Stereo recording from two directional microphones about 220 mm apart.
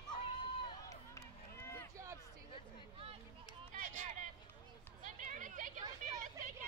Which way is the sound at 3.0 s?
25° right (ahead or behind).